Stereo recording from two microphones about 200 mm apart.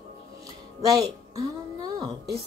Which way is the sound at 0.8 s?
15° right (ahead or behind).